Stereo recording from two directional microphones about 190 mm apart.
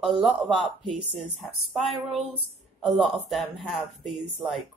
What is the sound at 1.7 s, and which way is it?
A woman's voice, centre (ahead or behind).